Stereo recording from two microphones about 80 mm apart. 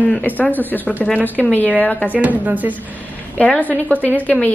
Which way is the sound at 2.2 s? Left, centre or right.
Right.